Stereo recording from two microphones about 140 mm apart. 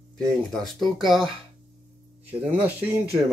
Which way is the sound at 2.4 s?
10° right (ahead or behind).